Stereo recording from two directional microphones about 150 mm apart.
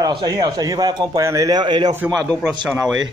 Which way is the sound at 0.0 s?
30° right (ahead or behind).